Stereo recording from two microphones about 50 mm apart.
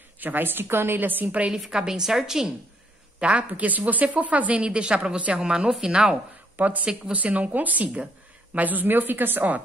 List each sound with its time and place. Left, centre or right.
0.2 s a woman's voice: right
1.5 s a woman's voice: centre
3.2 s a woman's voice: right
6.5 s speech: right